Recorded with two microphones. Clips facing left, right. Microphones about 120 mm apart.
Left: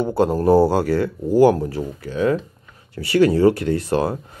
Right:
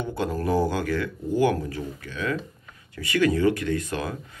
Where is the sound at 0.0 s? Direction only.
35° left (ahead or behind).